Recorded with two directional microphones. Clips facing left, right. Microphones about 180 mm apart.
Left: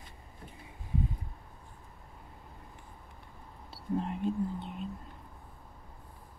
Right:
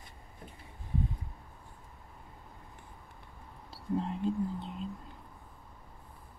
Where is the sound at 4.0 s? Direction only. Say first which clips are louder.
Even; 15° left (ahead or behind).